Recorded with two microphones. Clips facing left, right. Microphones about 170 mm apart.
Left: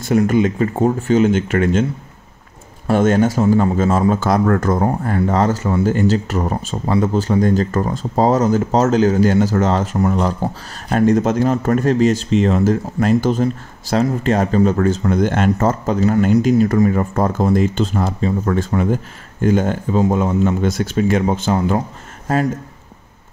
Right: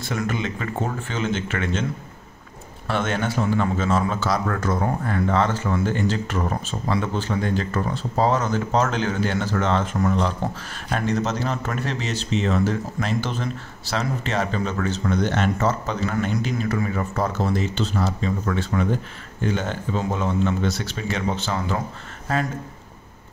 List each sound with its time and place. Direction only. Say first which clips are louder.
0.0 s speech: left 11 dB; 40° left (ahead or behind)
2.9 s a man's voice: left 10 dB; 45° left (ahead or behind)